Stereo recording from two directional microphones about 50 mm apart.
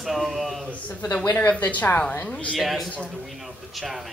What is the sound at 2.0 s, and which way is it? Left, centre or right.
Speech, left.